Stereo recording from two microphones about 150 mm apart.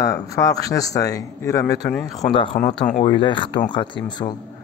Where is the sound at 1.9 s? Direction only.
5° left (ahead or behind).